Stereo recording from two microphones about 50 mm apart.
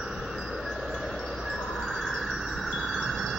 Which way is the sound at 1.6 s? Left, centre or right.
Centre.